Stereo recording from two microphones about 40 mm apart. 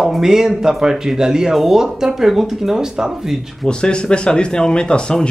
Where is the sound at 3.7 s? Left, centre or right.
Left.